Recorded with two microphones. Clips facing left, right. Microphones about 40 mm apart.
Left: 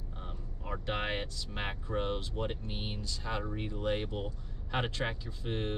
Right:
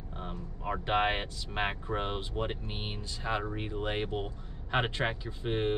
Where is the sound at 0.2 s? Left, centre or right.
Right.